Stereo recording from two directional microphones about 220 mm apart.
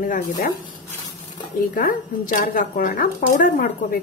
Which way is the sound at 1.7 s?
40° left (ahead or behind).